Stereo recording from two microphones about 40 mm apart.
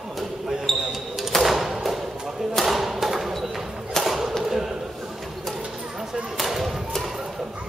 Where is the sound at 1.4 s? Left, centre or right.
Centre.